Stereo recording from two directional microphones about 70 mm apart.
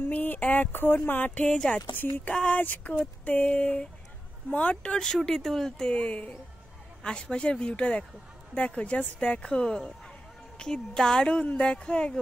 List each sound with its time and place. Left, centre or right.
0.0 s music: left
1.5 s speech: centre
2.3 s music: centre
3.3 s speech: centre
7.0 s speech: centre